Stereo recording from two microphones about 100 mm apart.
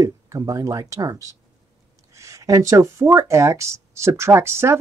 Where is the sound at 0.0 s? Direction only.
30° right (ahead or behind).